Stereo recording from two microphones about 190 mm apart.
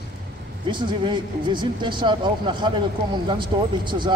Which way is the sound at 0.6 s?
25° right (ahead or behind).